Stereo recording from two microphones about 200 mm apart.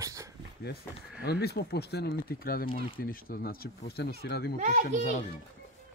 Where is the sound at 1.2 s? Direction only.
55° left (ahead or behind).